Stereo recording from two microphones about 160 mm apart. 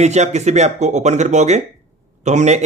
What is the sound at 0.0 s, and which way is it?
Speech, 45° right (ahead or behind).